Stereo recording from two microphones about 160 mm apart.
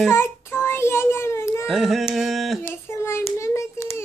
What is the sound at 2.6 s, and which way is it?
Child singing, 15° left (ahead or behind).